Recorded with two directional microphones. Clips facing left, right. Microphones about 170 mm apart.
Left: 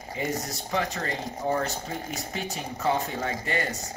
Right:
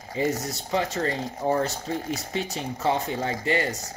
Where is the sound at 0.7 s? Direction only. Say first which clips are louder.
Right 4 dB; 30° right (ahead or behind).